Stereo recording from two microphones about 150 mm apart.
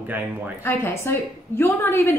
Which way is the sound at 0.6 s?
15° left (ahead or behind).